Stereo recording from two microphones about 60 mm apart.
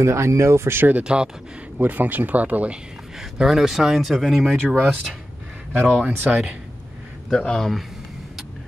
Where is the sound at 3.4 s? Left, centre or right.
Centre.